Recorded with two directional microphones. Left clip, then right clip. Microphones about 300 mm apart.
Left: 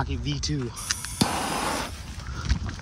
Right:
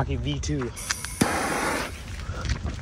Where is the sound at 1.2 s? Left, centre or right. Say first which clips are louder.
Right 2 dB; centre.